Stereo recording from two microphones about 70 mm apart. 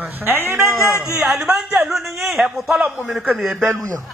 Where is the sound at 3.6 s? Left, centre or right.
Right.